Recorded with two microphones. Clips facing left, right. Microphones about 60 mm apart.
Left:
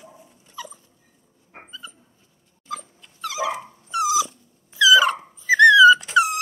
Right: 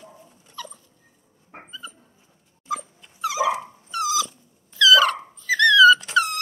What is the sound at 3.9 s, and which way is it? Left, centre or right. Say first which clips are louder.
Dog: left 3 dB; centre.